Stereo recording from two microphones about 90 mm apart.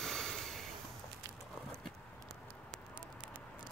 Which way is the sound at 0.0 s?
5° left (ahead or behind).